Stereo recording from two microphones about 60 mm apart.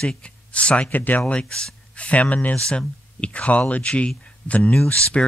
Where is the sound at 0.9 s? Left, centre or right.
Left.